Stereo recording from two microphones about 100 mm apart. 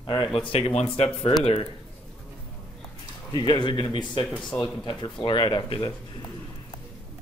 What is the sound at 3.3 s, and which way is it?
Speech, 45° left (ahead or behind).